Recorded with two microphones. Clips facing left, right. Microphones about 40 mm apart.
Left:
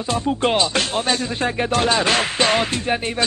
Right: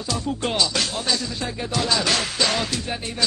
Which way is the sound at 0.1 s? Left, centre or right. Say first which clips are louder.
Left 6 dB; left.